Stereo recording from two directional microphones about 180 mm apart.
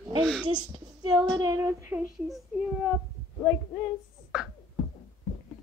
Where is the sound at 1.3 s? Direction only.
20° right (ahead or behind).